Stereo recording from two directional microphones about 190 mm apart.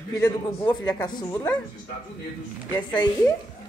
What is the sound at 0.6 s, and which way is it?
Speech, 20° left (ahead or behind).